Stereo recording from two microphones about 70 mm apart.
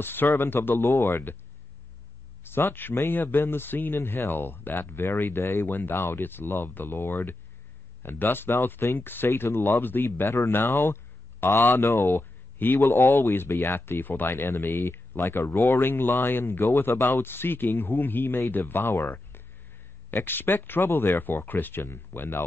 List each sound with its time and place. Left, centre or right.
0.0 s speech: left
0.3 s speech: left
2.4 s speech: left